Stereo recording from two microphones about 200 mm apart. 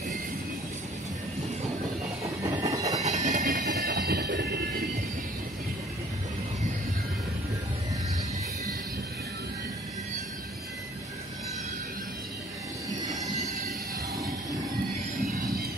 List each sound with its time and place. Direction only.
2.4 s train: 15° right (ahead or behind)
3.0 s train: 35° right (ahead or behind); by 4.8 s 55° right (ahead or behind)